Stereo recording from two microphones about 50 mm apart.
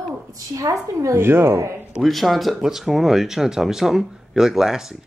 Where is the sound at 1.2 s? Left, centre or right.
Right.